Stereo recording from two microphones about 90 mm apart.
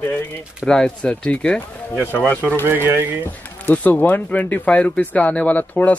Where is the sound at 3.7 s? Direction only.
20° left (ahead or behind).